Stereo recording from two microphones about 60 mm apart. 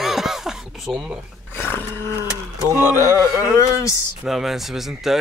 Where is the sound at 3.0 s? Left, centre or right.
Right.